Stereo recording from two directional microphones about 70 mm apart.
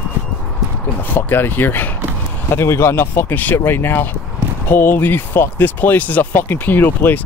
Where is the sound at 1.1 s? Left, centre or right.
Left.